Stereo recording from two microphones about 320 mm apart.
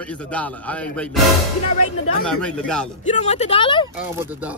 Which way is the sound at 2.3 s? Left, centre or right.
Centre.